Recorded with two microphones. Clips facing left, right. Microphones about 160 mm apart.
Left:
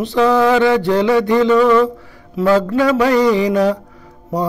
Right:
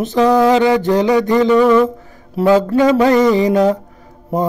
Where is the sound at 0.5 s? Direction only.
20° right (ahead or behind).